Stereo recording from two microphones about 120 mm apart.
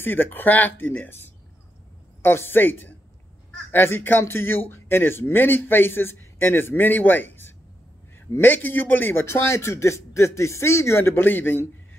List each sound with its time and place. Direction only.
0.0 s a man's voice: 15° left (ahead or behind)